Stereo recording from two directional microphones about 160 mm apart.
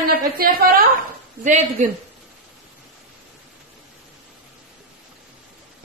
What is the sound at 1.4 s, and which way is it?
Speech, 50° right (ahead or behind).